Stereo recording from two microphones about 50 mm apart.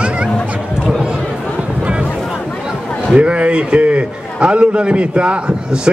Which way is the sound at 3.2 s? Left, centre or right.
Right.